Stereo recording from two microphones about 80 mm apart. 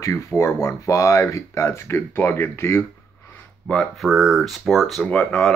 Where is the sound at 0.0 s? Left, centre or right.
Left.